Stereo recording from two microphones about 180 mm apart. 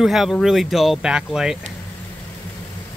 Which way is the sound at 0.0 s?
Centre (ahead or behind).